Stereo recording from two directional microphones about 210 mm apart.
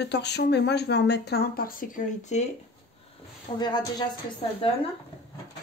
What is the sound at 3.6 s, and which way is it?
Speech, 20° left (ahead or behind).